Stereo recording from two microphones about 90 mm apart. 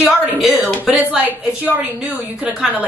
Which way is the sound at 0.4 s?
Centre (ahead or behind).